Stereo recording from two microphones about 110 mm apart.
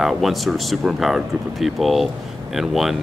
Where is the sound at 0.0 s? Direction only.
Centre (ahead or behind).